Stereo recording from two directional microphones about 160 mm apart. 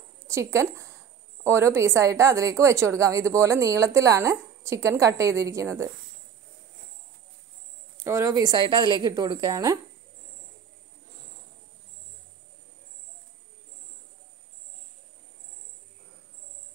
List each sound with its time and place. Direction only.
0.3 s a woman's voice: 20° right (ahead or behind)
8.0 s a woman's voice: 15° right (ahead or behind)